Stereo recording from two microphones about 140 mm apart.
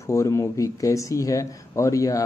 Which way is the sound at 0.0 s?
20° left (ahead or behind).